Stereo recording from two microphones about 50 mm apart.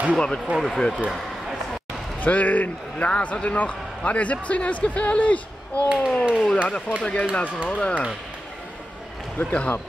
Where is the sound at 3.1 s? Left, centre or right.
Left.